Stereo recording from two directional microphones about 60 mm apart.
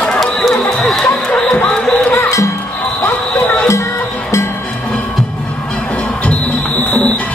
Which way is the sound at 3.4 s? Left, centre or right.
Left.